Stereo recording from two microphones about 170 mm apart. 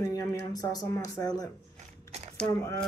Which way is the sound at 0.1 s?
20° left (ahead or behind).